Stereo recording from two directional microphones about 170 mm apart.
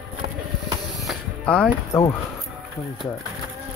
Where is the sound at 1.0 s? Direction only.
5° left (ahead or behind).